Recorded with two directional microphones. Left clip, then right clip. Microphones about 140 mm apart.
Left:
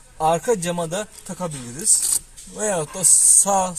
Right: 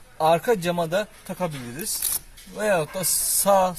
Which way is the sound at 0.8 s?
20° left (ahead or behind).